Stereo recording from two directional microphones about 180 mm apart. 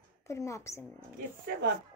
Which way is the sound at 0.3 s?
15° left (ahead or behind).